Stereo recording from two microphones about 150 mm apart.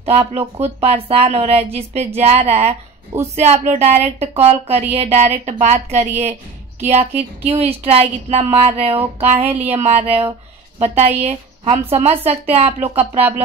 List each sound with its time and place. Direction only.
0.0 s speech: 40° right (ahead or behind)